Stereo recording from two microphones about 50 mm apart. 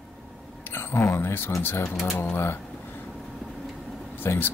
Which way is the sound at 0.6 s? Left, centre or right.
Left.